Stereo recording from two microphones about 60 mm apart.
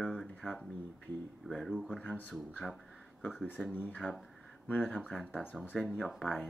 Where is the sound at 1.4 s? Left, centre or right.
Centre.